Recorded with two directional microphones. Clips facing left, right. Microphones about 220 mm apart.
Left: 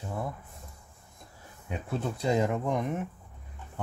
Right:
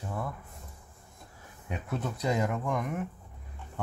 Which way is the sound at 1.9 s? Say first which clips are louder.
Left 2 dB; 30° left (ahead or behind).